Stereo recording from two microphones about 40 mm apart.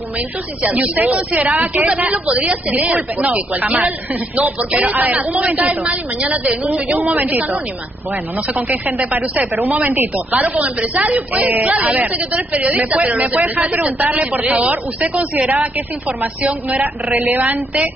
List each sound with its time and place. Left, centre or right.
0.6 s a woman's voice: right
3.3 s a woman's voice: right
8.5 s a woman's voice: right
17.1 s speech: right